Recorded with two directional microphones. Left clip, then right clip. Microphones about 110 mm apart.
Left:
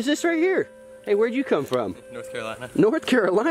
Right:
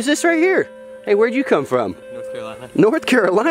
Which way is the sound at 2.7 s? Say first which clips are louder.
Right 5 dB; 40° right (ahead or behind).